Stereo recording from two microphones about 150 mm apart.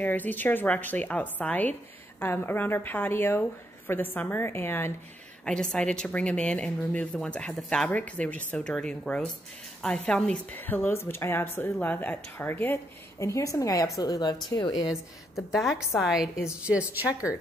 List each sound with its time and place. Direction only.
0.0 s a woman's voice: 10° left (ahead or behind); by 14.8 s 25° left (ahead or behind)
15.5 s a woman's voice: centre (ahead or behind)